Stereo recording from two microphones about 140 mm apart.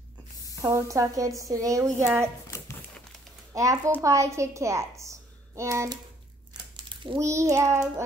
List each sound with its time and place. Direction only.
0.6 s a woman's voice: 25° right (ahead or behind)
3.5 s a woman's voice: 20° right (ahead or behind)
6.8 s a sound: 35° right (ahead or behind)
7.2 s a woman's voice: 20° right (ahead or behind)